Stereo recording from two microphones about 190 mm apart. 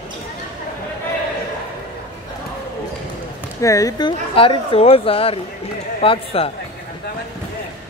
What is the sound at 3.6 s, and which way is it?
Speech, 15° left (ahead or behind).